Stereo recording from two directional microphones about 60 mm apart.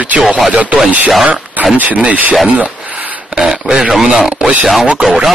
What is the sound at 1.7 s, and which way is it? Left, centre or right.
Speech, right.